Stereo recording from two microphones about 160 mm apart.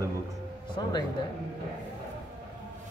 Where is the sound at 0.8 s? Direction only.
25° left (ahead or behind).